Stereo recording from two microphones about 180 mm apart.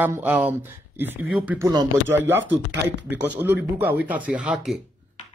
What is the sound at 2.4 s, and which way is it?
Speech, 75° right (ahead or behind).